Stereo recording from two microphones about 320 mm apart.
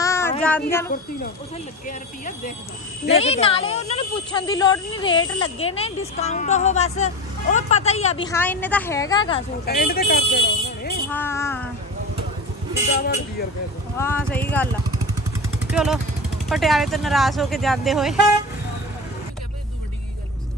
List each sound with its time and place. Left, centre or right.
0.0 s child singing: centre
1.9 s a woman's voice: left
8.3 s speech: centre
9.7 s speech: left
11.1 s speech: centre
13.9 s speech: centre